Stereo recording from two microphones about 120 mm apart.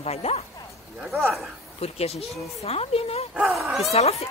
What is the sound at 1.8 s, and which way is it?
Speech, 60° left (ahead or behind).